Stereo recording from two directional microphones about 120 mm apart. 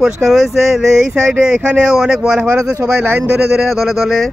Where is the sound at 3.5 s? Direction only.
Centre (ahead or behind).